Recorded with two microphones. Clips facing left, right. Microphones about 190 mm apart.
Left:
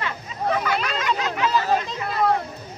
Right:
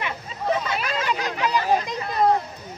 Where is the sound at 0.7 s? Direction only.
30° right (ahead or behind).